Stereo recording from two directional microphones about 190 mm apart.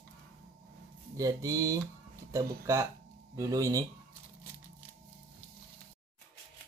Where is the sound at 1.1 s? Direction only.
20° right (ahead or behind).